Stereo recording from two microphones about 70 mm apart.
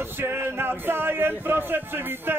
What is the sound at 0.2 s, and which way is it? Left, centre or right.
Speech, right.